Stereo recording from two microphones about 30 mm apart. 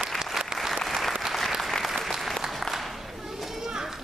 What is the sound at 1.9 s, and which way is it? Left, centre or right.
Applause, centre.